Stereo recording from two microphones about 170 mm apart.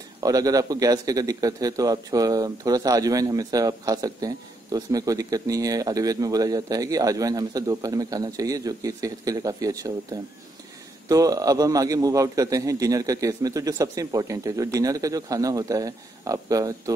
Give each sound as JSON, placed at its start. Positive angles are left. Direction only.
{"t": 0.2, "sound": "a man's voice", "side_deg": -20}
{"t": 11.1, "sound": "a man's voice", "side_deg": -20}